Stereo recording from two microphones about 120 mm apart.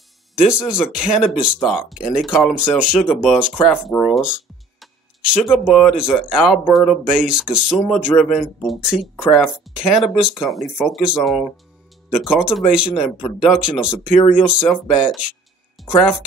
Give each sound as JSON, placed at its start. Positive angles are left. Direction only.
{"t": 0.4, "sound": "speech", "side_deg": -10}
{"t": 3.5, "sound": "speech", "side_deg": 15}
{"t": 4.1, "sound": "a man's voice", "side_deg": -5}